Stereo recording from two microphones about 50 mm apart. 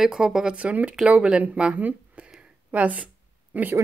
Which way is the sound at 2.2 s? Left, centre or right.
Centre.